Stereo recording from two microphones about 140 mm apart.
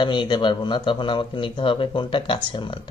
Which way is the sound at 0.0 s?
35° left (ahead or behind).